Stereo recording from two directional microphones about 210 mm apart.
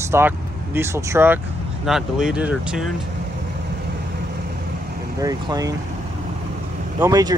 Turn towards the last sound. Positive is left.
turn(degrees=-20)  # may be behind; listen again after turning